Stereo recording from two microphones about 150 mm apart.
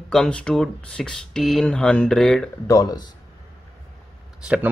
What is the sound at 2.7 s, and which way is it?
Speech, 25° left (ahead or behind).